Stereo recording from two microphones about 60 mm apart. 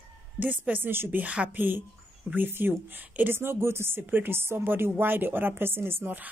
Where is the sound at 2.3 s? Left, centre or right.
Right.